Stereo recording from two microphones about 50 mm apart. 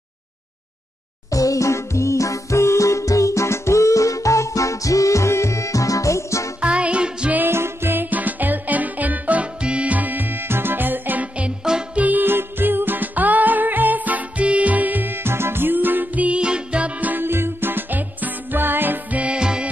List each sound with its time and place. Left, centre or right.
1.5 s music: left
6.6 s music: right
7.3 s music: right
16.3 s music: centre
17.2 s music: right
19.3 s music: centre